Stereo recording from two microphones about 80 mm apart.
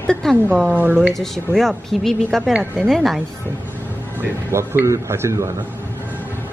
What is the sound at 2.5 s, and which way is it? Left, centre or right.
Speech, right.